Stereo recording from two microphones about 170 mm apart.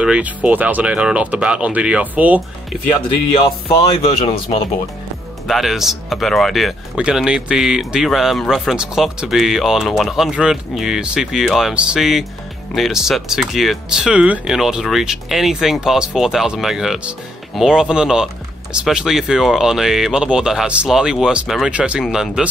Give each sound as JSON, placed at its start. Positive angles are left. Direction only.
{"t": 0.0, "sound": "speech", "side_deg": -5}
{"t": 3.4, "sound": "speech", "side_deg": 35}
{"t": 5.5, "sound": "speech", "side_deg": 0}